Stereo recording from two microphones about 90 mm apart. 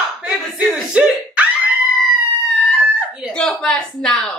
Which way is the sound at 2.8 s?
15° right (ahead or behind).